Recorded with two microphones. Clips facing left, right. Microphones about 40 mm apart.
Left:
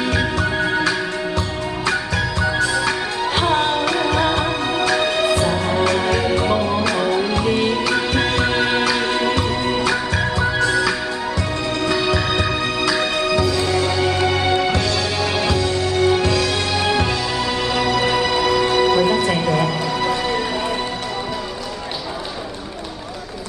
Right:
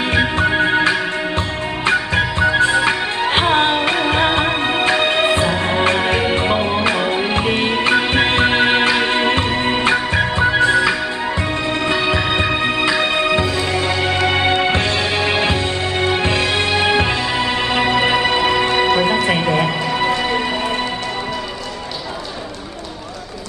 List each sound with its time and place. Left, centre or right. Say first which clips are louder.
0.1 s music: right 4 dB; right